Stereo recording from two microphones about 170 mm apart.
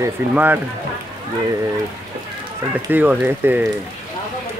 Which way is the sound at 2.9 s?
10° right (ahead or behind).